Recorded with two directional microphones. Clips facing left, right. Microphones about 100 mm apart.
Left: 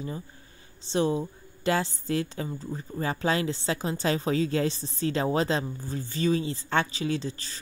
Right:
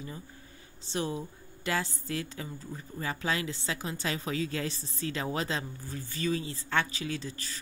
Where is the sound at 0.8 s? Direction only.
30° left (ahead or behind).